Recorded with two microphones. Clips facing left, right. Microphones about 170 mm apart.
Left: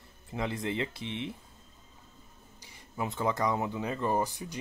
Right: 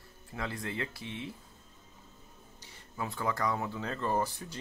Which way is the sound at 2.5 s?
15° left (ahead or behind).